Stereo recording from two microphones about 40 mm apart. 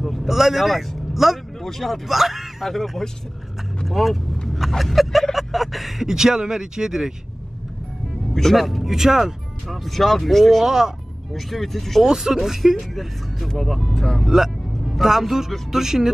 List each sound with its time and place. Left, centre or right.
0.0 s speech: centre
1.6 s speech: centre
8.5 s speech: centre
9.8 s speech: centre
10.6 s speech: centre
11.3 s speech: centre
12.0 s speech: centre
14.2 s speech: centre